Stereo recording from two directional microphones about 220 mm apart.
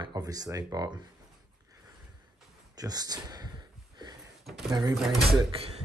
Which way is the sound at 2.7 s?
15° right (ahead or behind).